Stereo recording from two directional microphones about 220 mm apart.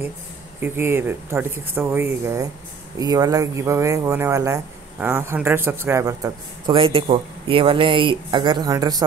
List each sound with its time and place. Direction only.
0.6 s speech: 10° right (ahead or behind)